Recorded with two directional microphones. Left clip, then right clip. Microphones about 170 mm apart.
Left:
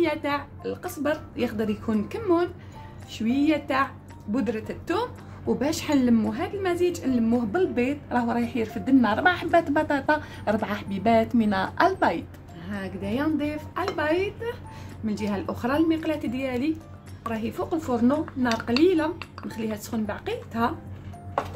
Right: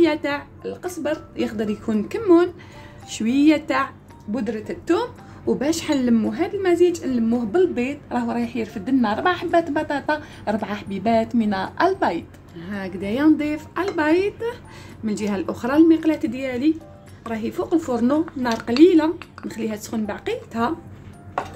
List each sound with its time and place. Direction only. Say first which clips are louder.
0.0 s a woman's voice: right 5 dB; 25° right (ahead or behind)
3.1 s speech: right 6 dB; 45° right (ahead or behind); by 3.9 s 30° right (ahead or behind)
4.3 s a woman's voice: right 2 dB; 10° right (ahead or behind)
12.5 s speech: right 4 dB; 30° right (ahead or behind)